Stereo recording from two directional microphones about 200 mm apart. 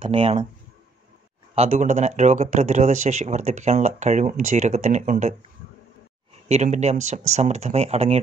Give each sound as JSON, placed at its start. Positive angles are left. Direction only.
{"t": 0.0, "sound": "speech", "side_deg": -25}
{"t": 1.5, "sound": "speech", "side_deg": -30}
{"t": 6.5, "sound": "speech", "side_deg": -35}